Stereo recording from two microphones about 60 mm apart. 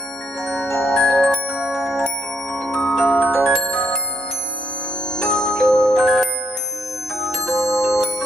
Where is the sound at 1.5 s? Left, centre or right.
Centre.